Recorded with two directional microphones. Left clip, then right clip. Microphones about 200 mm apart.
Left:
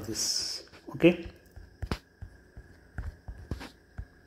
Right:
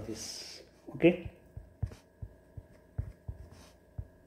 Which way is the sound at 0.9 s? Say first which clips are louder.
Left 4 dB; 45° left (ahead or behind).